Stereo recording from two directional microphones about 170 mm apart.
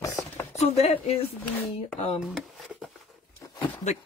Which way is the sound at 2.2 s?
Centre (ahead or behind).